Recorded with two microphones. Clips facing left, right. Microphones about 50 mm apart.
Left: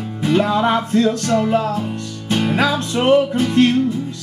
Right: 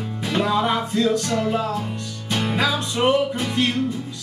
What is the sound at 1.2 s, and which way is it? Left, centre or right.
Music, centre.